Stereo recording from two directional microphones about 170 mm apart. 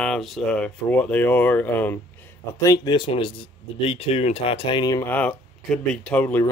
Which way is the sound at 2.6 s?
25° left (ahead or behind).